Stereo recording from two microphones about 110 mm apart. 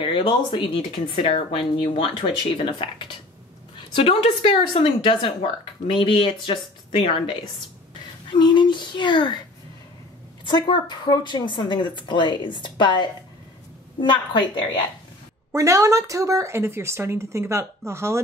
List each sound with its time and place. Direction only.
0.0 s speech: 50° left (ahead or behind)
3.9 s speech: 55° left (ahead or behind)
10.5 s speech: 40° left (ahead or behind)
14.5 s speech: 45° left (ahead or behind)
15.5 s speech: 30° right (ahead or behind)